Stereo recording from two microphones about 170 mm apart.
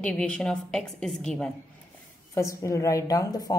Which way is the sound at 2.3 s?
20° left (ahead or behind).